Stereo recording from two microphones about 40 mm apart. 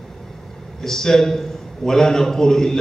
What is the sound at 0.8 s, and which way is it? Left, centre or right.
A man's voice, centre.